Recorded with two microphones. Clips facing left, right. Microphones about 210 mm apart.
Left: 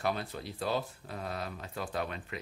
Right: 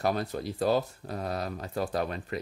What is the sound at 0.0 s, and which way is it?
Speech, 40° right (ahead or behind).